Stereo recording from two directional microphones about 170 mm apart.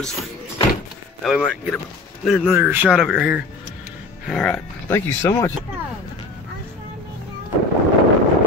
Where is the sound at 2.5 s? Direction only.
10° right (ahead or behind).